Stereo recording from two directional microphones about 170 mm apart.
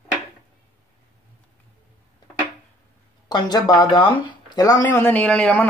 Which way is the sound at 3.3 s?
25° left (ahead or behind).